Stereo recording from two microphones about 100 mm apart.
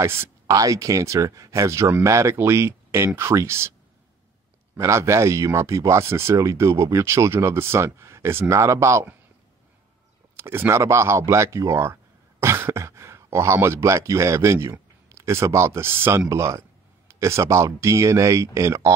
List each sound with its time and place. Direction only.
0.5 s speech: 35° right (ahead or behind)
4.7 s speech: 30° right (ahead or behind)
10.3 s speech: 25° right (ahead or behind)